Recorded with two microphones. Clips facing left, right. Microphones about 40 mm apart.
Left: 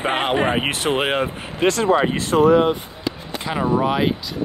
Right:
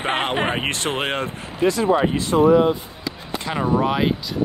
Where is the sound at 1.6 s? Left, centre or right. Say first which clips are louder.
Left 1 dB; left.